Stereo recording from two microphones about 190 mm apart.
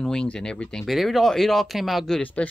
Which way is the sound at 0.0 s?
5° left (ahead or behind).